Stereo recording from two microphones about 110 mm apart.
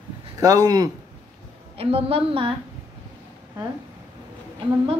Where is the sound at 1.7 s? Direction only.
65° right (ahead or behind).